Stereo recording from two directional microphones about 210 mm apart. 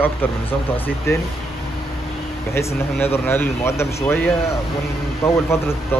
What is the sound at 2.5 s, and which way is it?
Speech, 10° left (ahead or behind).